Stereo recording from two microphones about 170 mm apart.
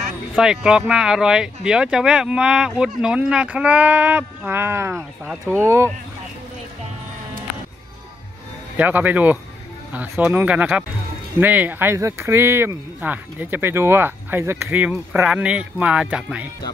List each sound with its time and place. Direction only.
0.4 s speech: 5° right (ahead or behind)
8.7 s speech: 10° right (ahead or behind)